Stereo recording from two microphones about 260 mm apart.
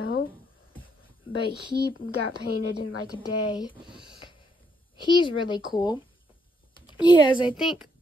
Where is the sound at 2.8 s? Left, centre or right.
Left.